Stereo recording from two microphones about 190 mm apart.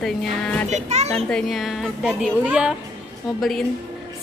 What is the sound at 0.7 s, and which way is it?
Speech, 35° right (ahead or behind).